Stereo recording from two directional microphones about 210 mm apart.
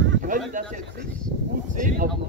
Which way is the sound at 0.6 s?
40° right (ahead or behind).